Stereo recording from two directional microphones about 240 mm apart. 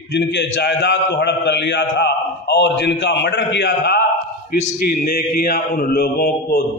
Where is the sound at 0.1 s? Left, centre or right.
Left.